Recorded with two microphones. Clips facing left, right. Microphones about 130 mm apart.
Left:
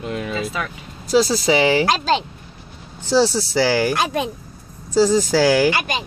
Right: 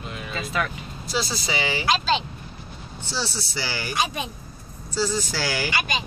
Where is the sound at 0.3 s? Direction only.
5° left (ahead or behind).